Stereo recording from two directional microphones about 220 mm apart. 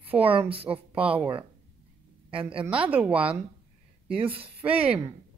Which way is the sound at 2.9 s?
5° right (ahead or behind).